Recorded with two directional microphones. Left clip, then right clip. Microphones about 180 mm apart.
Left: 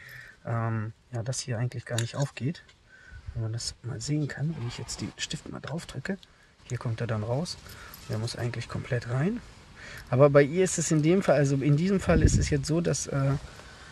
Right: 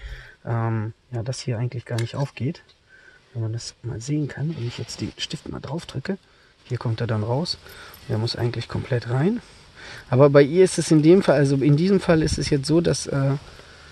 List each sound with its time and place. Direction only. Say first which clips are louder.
0.0 s speech: right 3 dB; 45° right (ahead or behind)